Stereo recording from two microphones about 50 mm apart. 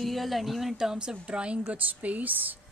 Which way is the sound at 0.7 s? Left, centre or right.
Centre.